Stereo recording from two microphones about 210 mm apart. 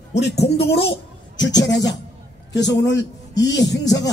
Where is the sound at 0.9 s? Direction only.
55° left (ahead or behind).